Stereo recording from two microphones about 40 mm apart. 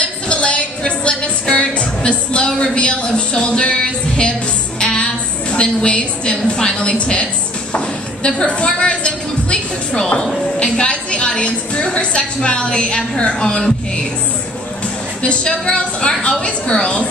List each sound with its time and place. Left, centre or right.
0.0 s music: left
2.4 s speech: left
4.7 s music: left
5.5 s a woman's voice: left
8.4 s a woman's voice: left
15.2 s a woman's voice: left